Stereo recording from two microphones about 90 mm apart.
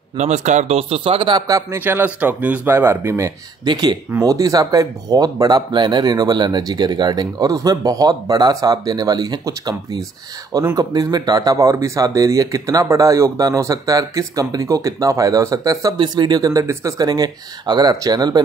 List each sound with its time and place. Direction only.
0.7 s speech: 90° right; by 1.4 s 75° right (ahead or behind)
1.8 s speech: 20° right (ahead or behind)
3.6 s speech: 50° right (ahead or behind)
16.0 s speech: 50° right (ahead or behind)